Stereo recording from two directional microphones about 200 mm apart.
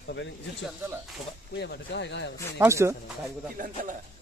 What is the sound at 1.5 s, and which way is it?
Speech, 55° left (ahead or behind).